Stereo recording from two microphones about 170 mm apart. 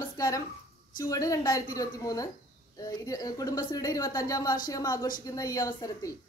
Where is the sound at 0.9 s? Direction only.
20° left (ahead or behind).